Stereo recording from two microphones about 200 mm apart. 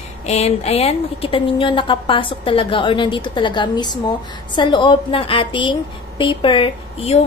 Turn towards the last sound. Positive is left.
turn(degrees=30)  # may be behind; listen again after turning